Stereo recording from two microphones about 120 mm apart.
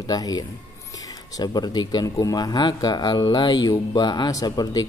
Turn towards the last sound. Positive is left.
turn(degrees=30)  # may be behind; listen again after turning